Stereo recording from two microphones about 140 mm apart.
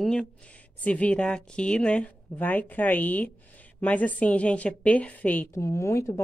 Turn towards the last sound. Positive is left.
turn(degrees=20)  # may be behind; listen again after turning